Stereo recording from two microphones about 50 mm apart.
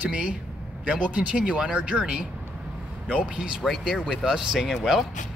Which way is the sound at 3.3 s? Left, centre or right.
Centre.